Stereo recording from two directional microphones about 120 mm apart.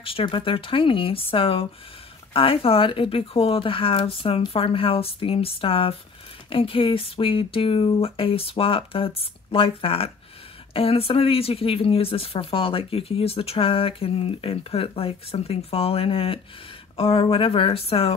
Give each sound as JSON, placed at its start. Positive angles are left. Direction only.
{"t": 0.0, "sound": "speech", "side_deg": 45}